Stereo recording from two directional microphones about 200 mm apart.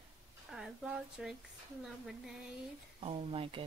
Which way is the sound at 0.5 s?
5° right (ahead or behind).